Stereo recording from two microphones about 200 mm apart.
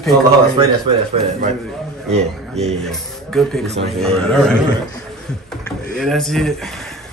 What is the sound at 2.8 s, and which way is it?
Speech, centre (ahead or behind).